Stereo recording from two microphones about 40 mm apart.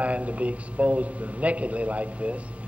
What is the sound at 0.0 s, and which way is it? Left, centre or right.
A man's voice, right.